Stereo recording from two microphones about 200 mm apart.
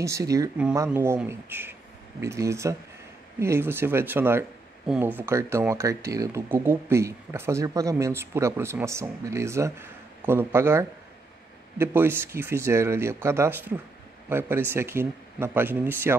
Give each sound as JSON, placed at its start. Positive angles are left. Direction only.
{"t": 0.0, "sound": "speech", "side_deg": -15}